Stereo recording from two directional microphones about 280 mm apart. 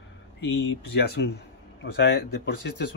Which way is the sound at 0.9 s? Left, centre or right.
Left.